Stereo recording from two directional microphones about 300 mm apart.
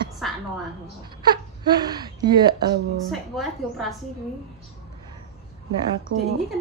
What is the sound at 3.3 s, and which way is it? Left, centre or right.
Speech, centre.